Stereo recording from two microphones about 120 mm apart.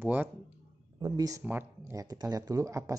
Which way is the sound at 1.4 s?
15° right (ahead or behind).